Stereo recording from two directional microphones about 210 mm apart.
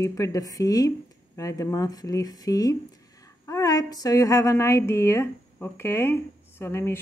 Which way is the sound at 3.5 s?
15° left (ahead or behind).